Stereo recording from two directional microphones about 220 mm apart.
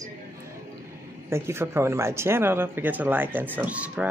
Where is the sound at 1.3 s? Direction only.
10° right (ahead or behind).